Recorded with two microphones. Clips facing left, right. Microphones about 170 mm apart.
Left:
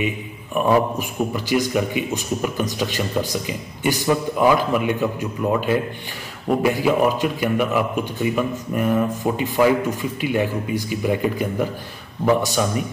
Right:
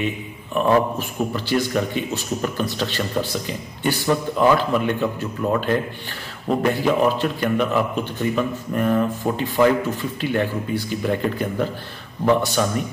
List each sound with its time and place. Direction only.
0.6 s a man's voice: 10° left (ahead or behind)